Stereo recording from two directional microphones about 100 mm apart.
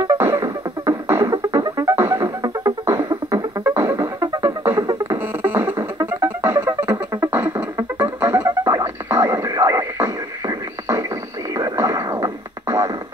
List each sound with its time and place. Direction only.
0.2 s music: 25° right (ahead or behind)